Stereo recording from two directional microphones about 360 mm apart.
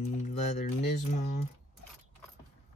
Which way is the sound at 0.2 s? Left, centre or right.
Centre.